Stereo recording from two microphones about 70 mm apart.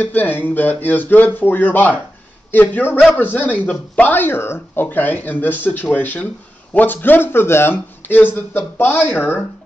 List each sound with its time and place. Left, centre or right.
0.0 s speech: left